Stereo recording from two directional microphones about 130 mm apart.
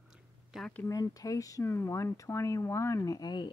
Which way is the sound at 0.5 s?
Centre (ahead or behind).